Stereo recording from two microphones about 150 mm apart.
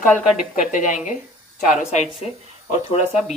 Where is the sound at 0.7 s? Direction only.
55° left (ahead or behind).